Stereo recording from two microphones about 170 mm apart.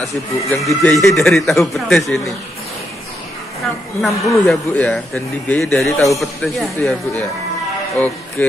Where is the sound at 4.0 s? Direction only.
Centre (ahead or behind).